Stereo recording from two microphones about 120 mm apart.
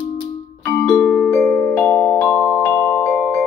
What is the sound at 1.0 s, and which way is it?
Music, 15° left (ahead or behind).